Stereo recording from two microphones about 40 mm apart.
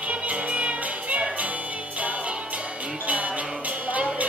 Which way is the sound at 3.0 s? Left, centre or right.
Right.